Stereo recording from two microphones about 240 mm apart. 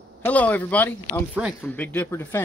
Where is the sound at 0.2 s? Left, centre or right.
Centre.